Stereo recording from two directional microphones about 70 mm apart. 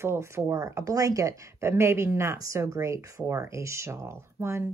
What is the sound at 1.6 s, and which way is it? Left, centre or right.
A woman's voice, right.